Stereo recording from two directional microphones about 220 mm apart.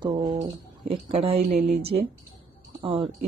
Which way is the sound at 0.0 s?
20° right (ahead or behind).